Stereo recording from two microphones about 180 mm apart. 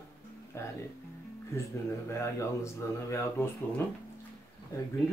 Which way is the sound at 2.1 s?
15° left (ahead or behind).